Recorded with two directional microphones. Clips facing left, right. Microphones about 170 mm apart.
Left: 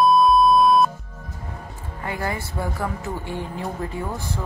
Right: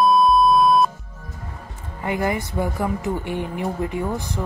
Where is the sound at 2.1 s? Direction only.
20° right (ahead or behind).